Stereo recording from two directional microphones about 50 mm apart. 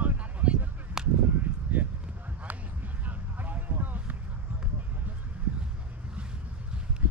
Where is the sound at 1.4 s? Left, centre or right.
Right.